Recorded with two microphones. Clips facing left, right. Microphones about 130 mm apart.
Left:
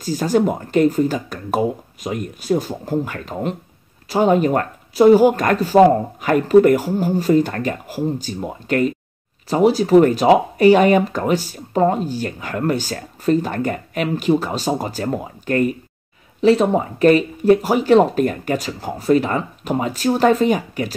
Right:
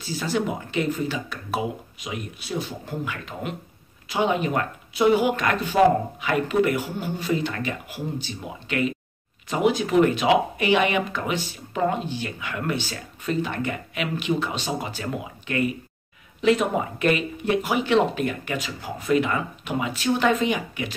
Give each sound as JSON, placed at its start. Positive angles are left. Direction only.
{"t": 0.0, "sound": "speech", "side_deg": 45}